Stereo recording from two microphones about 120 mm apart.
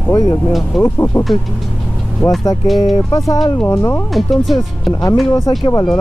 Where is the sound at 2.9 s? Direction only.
30° left (ahead or behind).